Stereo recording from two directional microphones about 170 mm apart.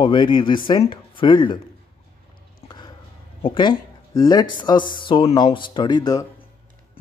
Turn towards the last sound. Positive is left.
turn(degrees=25)  # may be behind; listen again after turning